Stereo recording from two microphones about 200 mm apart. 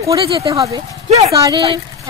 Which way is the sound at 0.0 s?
15° right (ahead or behind).